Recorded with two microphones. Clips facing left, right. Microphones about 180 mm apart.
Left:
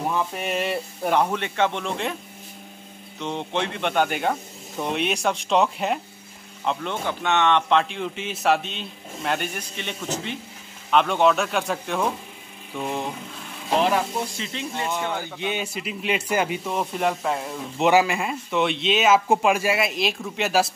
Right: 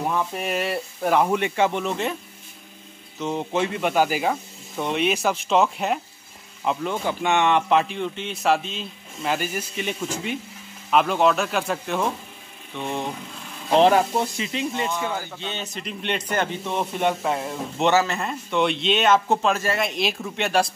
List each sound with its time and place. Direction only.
0.0 s speech: centre (ahead or behind)
3.2 s speech: 5° right (ahead or behind)
13.7 s speech: 30° right (ahead or behind)
14.9 s speech: 15° left (ahead or behind)
17.9 s a man's voice: 10° left (ahead or behind)